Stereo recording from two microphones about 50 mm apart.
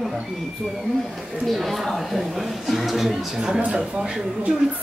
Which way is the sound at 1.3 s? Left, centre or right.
Centre.